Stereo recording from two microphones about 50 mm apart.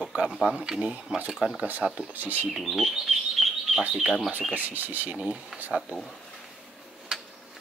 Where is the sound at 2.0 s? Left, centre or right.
Right.